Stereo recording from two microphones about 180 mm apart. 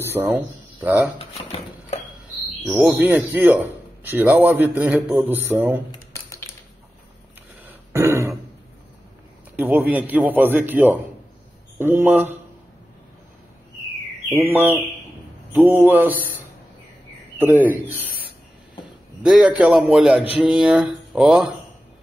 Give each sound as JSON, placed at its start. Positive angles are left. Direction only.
{"t": 0.0, "sound": "speech", "side_deg": -15}
{"t": 2.7, "sound": "mantra", "side_deg": 0}
{"t": 3.3, "sound": "a man's voice", "side_deg": -10}
{"t": 5.9, "sound": "a sound", "side_deg": 15}
{"t": 7.6, "sound": "throat clearing", "side_deg": -15}
{"t": 9.6, "sound": "a man's voice", "side_deg": -10}
{"t": 14.3, "sound": "a man's voice", "side_deg": -10}
{"t": 19.2, "sound": "a man's voice", "side_deg": -5}
{"t": 20.3, "sound": "mantra", "side_deg": -5}